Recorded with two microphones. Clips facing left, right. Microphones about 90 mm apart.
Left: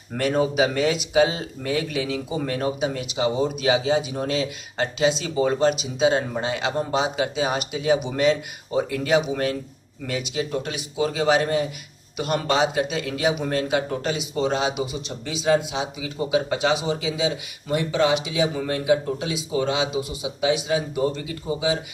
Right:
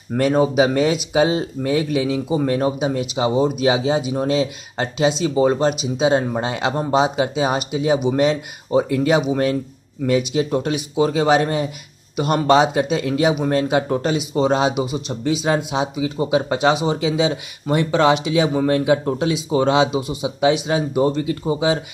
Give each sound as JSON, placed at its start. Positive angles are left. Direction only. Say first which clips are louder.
{"t": 0.2, "sound": "speech", "louder": "right 5 dB", "side_deg": -25}
{"t": 16.0, "sound": "speech", "louder": "right 3 dB", "side_deg": -30}
{"t": 17.0, "sound": "speech", "louder": "right 6 dB", "side_deg": -55}
{"t": 19.9, "sound": "speech", "louder": "right 5 dB", "side_deg": -30}
{"t": 20.6, "sound": "speech", "louder": "right 5 dB", "side_deg": -45}